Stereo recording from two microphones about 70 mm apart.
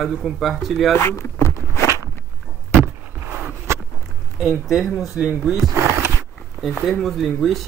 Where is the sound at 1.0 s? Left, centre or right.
Left.